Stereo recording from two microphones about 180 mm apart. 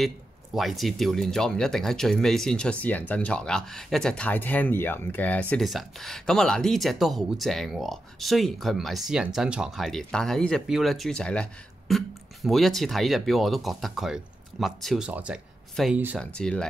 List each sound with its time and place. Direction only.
0.6 s speech: centre (ahead or behind)